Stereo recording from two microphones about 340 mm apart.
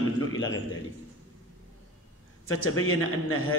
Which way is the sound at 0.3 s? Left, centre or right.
Left.